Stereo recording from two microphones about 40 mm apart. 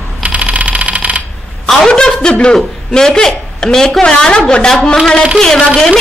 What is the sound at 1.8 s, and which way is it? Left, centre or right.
A woman's voice, centre.